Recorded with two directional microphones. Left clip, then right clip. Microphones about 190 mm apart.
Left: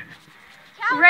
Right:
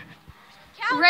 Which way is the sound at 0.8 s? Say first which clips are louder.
Left 3 dB; 30° right (ahead or behind).